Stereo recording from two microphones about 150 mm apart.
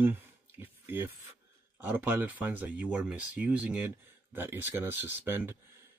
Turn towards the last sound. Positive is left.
turn(degrees=-15)  # may be behind; listen again after turning